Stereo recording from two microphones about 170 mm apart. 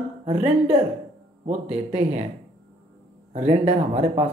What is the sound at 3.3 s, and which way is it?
Speech, 40° right (ahead or behind).